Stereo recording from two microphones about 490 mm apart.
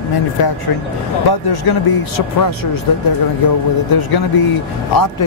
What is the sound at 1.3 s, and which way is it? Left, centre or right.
Speech, left.